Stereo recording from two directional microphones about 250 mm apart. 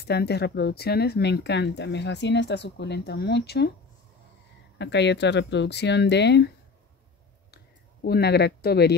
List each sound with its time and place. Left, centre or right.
0.0 s speech: left
4.7 s speech: left
7.5 s speech: left